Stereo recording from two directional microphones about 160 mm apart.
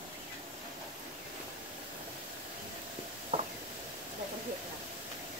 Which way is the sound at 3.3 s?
35° right (ahead or behind).